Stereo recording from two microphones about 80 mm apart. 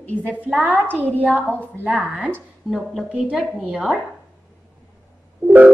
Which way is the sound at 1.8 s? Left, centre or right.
Centre.